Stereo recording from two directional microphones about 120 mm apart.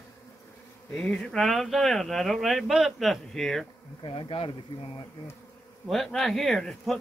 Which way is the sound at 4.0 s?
45° left (ahead or behind).